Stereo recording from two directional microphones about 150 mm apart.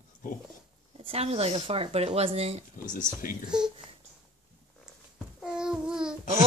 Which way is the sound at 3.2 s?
65° left (ahead or behind).